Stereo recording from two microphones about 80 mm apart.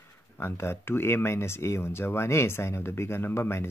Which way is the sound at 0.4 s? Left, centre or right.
Left.